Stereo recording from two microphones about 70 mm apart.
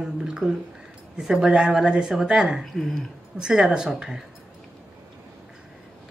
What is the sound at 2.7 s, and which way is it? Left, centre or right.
Speech, centre.